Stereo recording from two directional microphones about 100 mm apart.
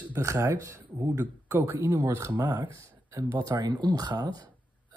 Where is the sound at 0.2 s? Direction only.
30° right (ahead or behind).